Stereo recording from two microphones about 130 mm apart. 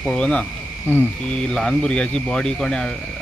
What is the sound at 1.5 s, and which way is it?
Speech, 5° left (ahead or behind).